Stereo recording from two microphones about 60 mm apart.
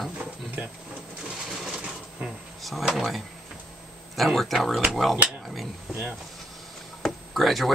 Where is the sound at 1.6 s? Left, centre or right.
Centre.